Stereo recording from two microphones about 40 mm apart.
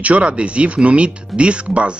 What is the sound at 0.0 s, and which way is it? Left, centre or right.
Speech, right.